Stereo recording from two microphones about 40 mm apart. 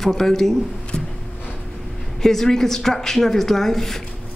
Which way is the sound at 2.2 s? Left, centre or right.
Centre.